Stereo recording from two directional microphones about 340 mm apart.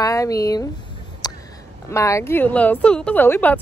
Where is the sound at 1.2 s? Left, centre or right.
Centre.